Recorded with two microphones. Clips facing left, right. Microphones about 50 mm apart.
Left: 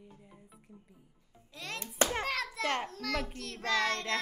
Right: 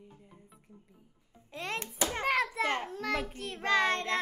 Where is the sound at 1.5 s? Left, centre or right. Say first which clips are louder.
Right 5 dB; right.